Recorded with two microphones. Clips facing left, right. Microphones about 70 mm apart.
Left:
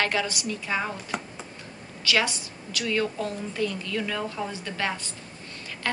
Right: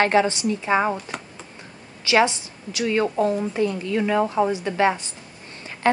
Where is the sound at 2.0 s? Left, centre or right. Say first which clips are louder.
Right 7 dB; right.